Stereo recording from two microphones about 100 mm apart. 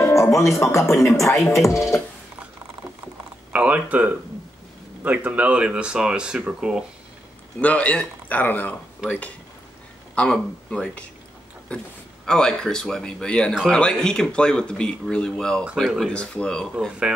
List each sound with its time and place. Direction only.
0.0 s music: 30° left (ahead or behind)
3.5 s speech: 15° right (ahead or behind)
7.6 s speech: 15° left (ahead or behind)
9.0 s speech: 10° right (ahead or behind)
10.1 s speech: 10° left (ahead or behind)
12.3 s speech: 5° left (ahead or behind)